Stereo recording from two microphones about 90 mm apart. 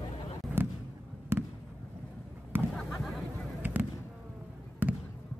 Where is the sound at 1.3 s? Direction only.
25° right (ahead or behind).